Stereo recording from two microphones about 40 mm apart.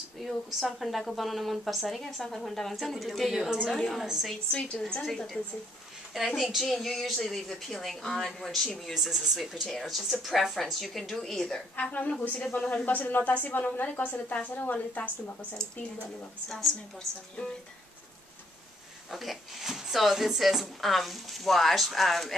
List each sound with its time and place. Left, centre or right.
0.2 s speech: centre
3.7 s speech: centre
4.0 s speech: centre
4.5 s a woman's voice: left
5.0 s speech: centre
8.9 s speech: centre
9.7 s speech: centre
11.8 s a woman's voice: left
15.5 s a woman's voice: centre
16.5 s speech: centre
17.4 s a woman's voice: left
19.0 s speech: centre